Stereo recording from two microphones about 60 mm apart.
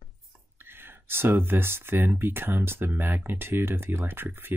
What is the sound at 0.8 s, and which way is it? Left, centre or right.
Speech, right.